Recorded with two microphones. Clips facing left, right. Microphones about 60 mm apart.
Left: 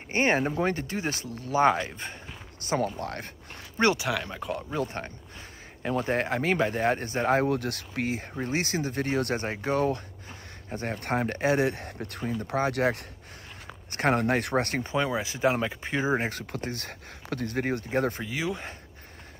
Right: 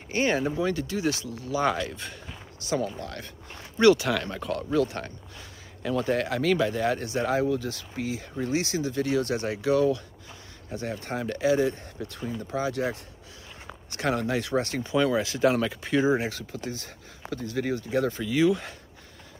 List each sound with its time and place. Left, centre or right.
0.1 s speech: left
2.6 s speech: left
4.0 s speech: centre
4.7 s speech: left
7.4 s speech: left
8.3 s speech: left
12.2 s speech: left
12.4 s speech: left
13.9 s speech: left
15.0 s speech: left
18.2 s speech: left